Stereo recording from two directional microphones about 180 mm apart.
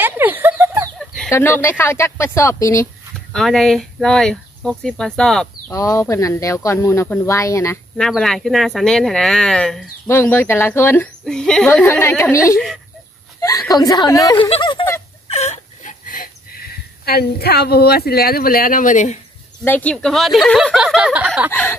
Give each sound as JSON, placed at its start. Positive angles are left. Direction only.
{"t": 0.0, "sound": "chicken", "side_deg": -10}
{"t": 0.9, "sound": "chicken", "side_deg": 0}
{"t": 1.3, "sound": "speech", "side_deg": 15}
{"t": 3.3, "sound": "speech", "side_deg": 0}
{"t": 5.7, "sound": "speech", "side_deg": 15}
{"t": 8.0, "sound": "speech", "side_deg": 0}
{"t": 12.5, "sound": "speech", "side_deg": 0}
{"t": 13.4, "sound": "speech", "side_deg": 20}
{"t": 15.2, "sound": "whimper", "side_deg": 35}
{"t": 19.6, "sound": "speech", "side_deg": 10}
{"t": 21.5, "sound": "speech", "side_deg": 15}